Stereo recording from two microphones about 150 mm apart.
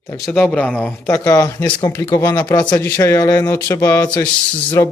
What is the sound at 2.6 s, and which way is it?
Speech, 15° left (ahead or behind).